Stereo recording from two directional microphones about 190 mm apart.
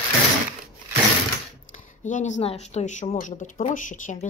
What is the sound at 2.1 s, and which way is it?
A woman's voice, 40° left (ahead or behind).